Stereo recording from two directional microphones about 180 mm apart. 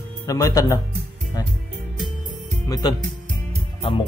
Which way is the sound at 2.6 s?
20° left (ahead or behind).